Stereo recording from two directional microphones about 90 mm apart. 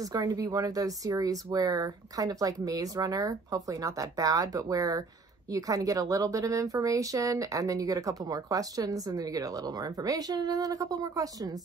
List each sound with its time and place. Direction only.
0.0 s a woman's voice: 50° right (ahead or behind)